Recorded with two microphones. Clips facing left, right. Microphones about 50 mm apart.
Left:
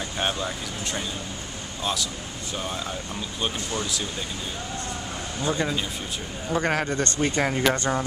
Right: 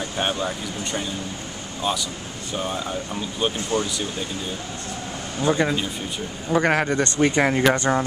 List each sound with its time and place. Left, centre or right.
0.2 s speech: centre
1.8 s speech: centre
5.4 s speech: centre
6.6 s speech: right